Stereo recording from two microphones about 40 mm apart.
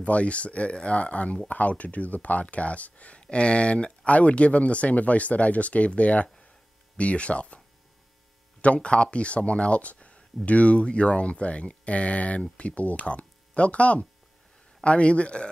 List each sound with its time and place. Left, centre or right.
0.0 s speech: left